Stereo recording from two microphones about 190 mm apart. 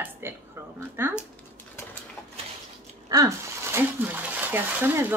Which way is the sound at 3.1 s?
20° right (ahead or behind).